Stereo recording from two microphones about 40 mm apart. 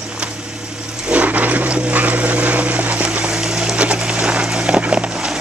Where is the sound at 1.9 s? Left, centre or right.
Right.